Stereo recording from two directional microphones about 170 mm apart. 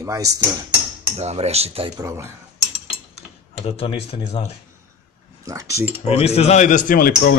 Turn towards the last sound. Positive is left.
turn(degrees=55)  # may be behind; listen again after turning